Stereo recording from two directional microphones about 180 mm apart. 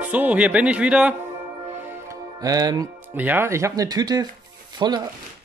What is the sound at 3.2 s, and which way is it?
Speech, 10° right (ahead or behind).